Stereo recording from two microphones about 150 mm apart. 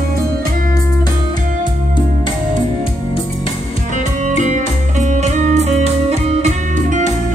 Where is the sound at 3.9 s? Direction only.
55° right (ahead or behind).